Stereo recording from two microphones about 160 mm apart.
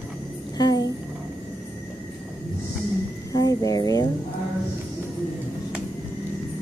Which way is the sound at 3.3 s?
25° left (ahead or behind).